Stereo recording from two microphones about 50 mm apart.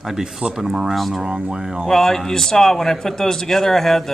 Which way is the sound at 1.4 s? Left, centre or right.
Centre.